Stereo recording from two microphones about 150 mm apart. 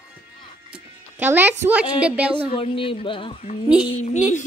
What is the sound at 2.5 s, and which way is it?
Speech, 35° left (ahead or behind).